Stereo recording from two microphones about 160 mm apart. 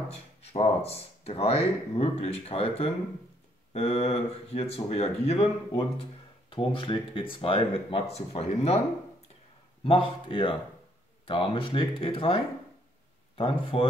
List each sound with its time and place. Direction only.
0.1 s speech: 40° left (ahead or behind)
9.8 s speech: 35° left (ahead or behind)
13.4 s speech: 35° left (ahead or behind)